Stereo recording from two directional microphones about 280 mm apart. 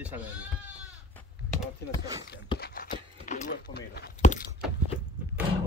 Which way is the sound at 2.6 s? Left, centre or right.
Left.